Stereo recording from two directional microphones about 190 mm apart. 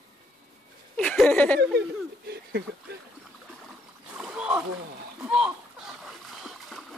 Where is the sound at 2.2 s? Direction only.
60° right (ahead or behind).